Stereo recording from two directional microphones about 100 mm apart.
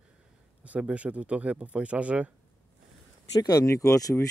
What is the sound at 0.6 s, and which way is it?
Speech, 10° right (ahead or behind).